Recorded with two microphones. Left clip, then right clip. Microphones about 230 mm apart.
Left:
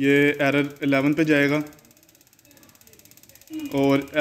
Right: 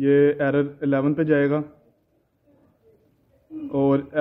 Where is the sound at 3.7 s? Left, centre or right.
Centre.